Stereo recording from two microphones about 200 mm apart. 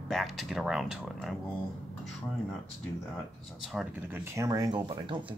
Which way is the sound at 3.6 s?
5° right (ahead or behind).